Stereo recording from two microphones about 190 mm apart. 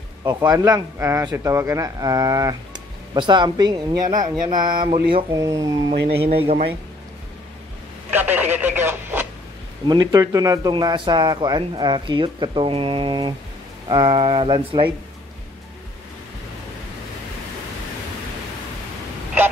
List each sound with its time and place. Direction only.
0.2 s speech: 20° right (ahead or behind)
6.0 s a man's voice: 30° right (ahead or behind)
8.1 s telephone: 10° right (ahead or behind)
9.8 s speech: 20° right (ahead or behind)